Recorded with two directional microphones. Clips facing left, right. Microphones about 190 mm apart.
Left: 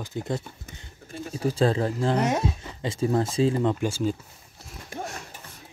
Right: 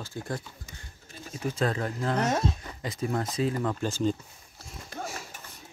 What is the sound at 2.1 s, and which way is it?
Speech, 10° left (ahead or behind).